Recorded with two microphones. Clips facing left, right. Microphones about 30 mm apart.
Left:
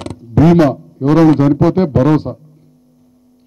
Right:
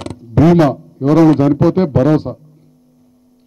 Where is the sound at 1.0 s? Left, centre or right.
Centre.